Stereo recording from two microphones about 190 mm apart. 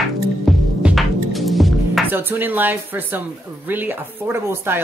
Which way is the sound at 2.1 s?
10° right (ahead or behind).